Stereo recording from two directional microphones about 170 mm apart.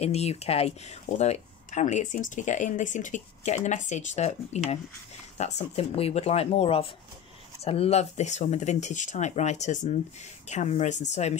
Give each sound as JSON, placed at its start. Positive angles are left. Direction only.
{"t": 0.0, "sound": "speech", "side_deg": 40}